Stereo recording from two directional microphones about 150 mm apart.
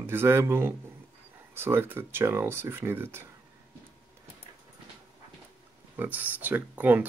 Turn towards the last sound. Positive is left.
turn(degrees=-10)  # may be behind; listen again after turning